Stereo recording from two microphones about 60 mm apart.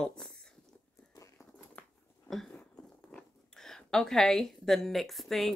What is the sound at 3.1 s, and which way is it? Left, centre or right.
Speech, centre.